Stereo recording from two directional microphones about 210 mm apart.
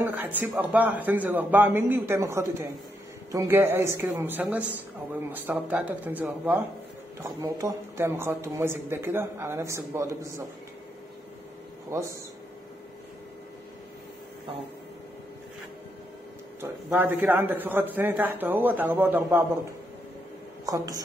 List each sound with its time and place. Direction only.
0.0 s speech: 10° right (ahead or behind)
11.9 s speech: 15° right (ahead or behind)
16.6 s speech: 10° right (ahead or behind)
20.6 s speech: 15° right (ahead or behind)